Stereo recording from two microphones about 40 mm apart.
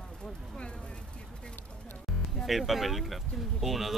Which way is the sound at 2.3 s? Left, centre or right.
Centre.